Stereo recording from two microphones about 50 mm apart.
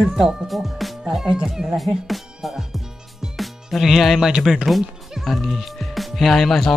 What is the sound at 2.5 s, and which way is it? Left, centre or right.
Music, centre.